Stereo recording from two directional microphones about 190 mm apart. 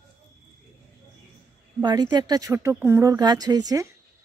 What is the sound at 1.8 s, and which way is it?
Speech, 20° right (ahead or behind).